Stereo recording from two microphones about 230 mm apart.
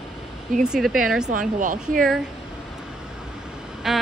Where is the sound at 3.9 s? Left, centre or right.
Centre.